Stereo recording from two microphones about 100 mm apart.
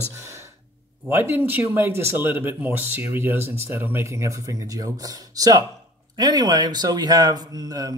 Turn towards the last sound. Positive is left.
turn(degrees=-40)  # may be behind; listen again after turning